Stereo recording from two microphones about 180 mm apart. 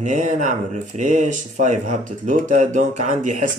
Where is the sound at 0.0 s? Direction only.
45° right (ahead or behind).